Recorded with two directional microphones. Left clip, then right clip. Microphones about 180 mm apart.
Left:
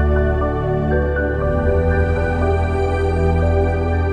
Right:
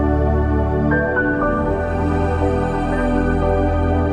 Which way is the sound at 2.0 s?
Centre (ahead or behind).